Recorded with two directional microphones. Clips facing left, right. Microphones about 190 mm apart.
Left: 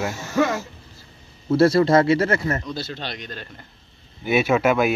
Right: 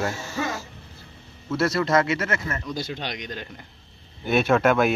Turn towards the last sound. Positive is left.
turn(degrees=5)  # may be behind; listen again after turning